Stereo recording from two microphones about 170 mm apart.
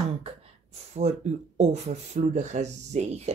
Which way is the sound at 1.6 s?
45° right (ahead or behind).